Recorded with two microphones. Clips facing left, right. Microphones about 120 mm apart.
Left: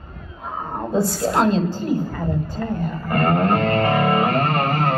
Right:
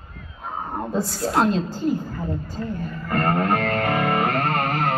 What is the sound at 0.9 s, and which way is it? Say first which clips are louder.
Speech: left 4 dB; 35° left (ahead or behind).